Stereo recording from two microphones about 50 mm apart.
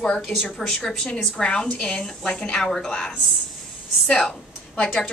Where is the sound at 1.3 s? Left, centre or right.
Centre.